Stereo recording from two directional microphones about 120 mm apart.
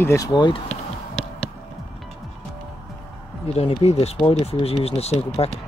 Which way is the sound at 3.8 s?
60° left (ahead or behind).